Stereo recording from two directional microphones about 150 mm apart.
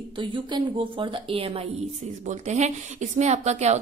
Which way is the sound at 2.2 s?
50° right (ahead or behind).